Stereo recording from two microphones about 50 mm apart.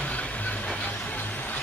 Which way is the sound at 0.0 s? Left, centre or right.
Left.